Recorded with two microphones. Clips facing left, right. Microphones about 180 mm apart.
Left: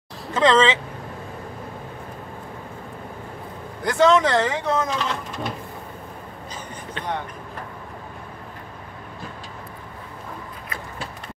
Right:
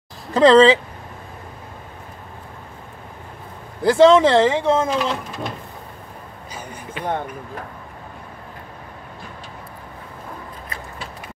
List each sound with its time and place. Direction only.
0.3 s speech: 35° right (ahead or behind)
3.8 s speech: 30° right (ahead or behind)
4.8 s speech: 10° right (ahead or behind)
6.5 s vehicle: 10° right (ahead or behind)